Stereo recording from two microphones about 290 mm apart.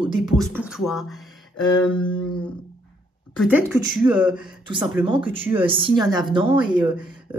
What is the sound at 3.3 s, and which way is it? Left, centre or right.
Speech, centre.